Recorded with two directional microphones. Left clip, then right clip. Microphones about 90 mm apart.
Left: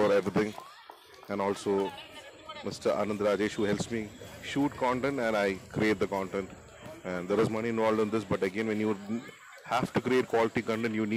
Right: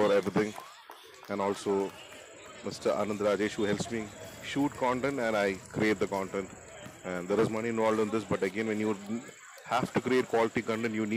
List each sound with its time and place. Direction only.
0.0 s speech: centre (ahead or behind)